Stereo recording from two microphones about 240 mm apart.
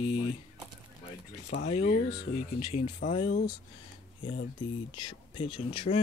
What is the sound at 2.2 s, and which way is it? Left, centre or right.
Speech, left.